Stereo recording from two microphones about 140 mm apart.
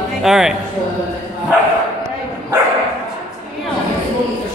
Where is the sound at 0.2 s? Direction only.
5° right (ahead or behind).